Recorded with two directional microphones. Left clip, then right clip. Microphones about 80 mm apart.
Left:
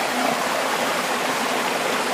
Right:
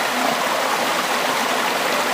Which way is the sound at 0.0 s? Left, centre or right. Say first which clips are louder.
Right 2 dB; right.